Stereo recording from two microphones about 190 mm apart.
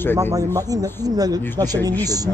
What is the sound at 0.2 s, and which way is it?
Speech, 15° right (ahead or behind).